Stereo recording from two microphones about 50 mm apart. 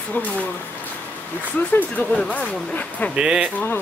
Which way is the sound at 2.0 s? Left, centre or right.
Left.